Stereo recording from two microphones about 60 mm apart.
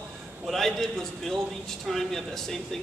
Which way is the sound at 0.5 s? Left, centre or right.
Centre.